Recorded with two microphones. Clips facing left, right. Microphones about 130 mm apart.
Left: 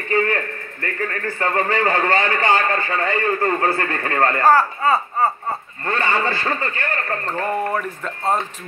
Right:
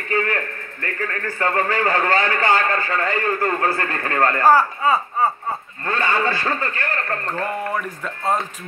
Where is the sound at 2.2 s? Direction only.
25° left (ahead or behind).